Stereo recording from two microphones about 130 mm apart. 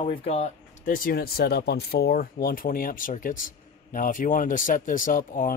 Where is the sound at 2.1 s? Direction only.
90° left.